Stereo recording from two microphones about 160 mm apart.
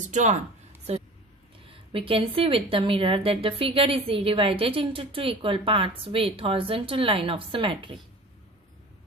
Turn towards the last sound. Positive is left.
turn(degrees=-30)  # may be behind; listen again after turning